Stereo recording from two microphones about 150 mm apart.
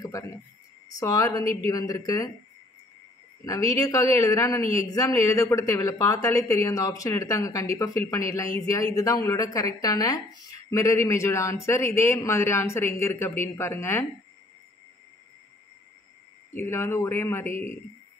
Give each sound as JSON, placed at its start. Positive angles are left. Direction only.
{"t": 0.0, "sound": "a sound", "side_deg": 20}
{"t": 0.8, "sound": "speech", "side_deg": 25}
{"t": 3.4, "sound": "speech", "side_deg": 20}
{"t": 16.5, "sound": "speech", "side_deg": 15}